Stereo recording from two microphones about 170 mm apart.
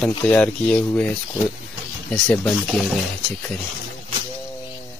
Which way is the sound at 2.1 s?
5° left (ahead or behind).